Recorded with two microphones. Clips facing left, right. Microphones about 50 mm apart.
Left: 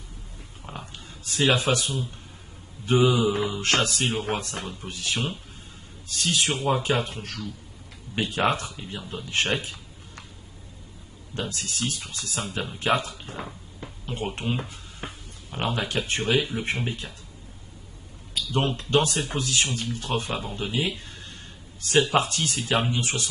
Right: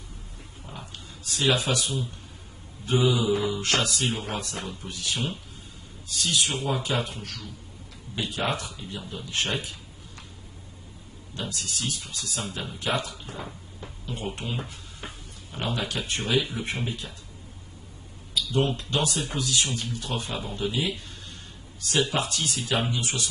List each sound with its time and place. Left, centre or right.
0.7 s speech: left
11.3 s speech: left
18.3 s speech: left